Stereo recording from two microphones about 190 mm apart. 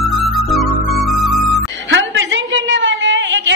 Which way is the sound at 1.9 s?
80° right.